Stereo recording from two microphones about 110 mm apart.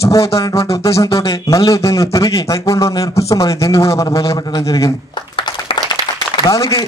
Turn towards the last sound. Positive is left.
turn(degrees=30)  # may be behind; listen again after turning